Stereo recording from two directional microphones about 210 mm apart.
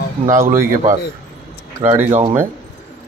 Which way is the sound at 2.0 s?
35° right (ahead or behind).